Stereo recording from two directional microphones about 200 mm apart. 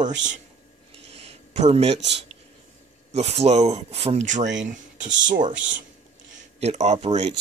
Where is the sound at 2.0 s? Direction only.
60° right (ahead or behind).